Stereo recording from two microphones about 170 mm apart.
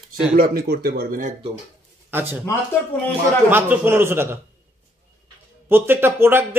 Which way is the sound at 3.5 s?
10° right (ahead or behind).